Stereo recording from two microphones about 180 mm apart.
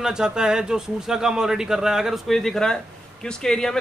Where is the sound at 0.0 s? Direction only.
5° right (ahead or behind).